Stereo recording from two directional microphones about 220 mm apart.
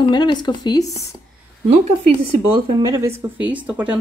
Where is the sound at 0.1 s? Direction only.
20° left (ahead or behind).